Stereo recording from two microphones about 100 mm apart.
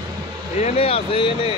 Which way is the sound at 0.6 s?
80° left.